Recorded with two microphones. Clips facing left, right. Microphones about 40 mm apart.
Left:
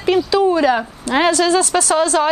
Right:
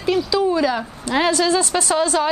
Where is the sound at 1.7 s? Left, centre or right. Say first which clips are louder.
Left 3 dB; centre.